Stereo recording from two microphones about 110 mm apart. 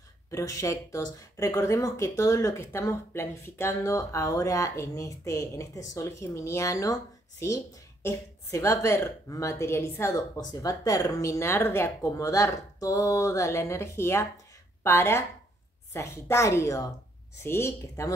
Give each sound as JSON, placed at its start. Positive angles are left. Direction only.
{"t": 0.3, "sound": "speech", "side_deg": 30}